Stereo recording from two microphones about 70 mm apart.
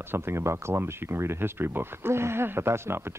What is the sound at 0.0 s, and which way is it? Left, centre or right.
Speech, right.